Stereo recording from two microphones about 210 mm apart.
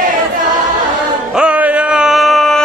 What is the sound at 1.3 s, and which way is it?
Music, 5° right (ahead or behind).